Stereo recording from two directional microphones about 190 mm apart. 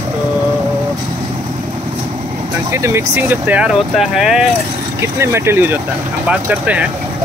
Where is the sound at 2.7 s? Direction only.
15° right (ahead or behind).